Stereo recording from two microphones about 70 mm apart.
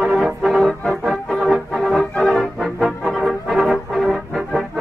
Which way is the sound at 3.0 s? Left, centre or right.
Centre.